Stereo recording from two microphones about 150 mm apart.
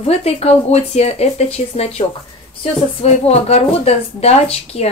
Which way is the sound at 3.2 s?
45° left (ahead or behind).